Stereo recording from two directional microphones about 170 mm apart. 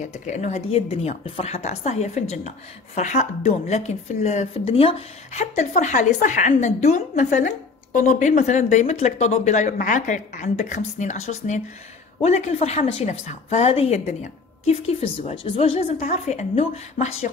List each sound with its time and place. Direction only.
0.1 s a woman's voice: 45° left (ahead or behind)